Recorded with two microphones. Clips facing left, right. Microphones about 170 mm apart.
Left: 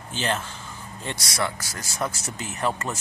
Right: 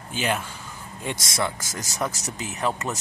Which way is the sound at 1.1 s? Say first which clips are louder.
Right 2 dB; 45° right (ahead or behind).